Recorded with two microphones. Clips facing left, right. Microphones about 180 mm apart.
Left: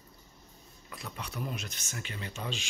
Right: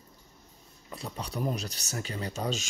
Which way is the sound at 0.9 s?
30° right (ahead or behind).